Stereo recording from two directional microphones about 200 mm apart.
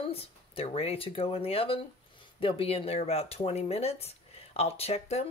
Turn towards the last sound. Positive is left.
turn(degrees=30)  # may be behind; listen again after turning